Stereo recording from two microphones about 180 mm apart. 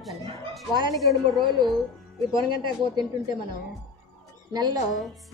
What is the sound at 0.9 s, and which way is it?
Speech, centre (ahead or behind).